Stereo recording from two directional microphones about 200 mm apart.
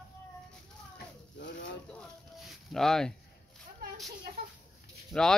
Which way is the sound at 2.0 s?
Centre (ahead or behind).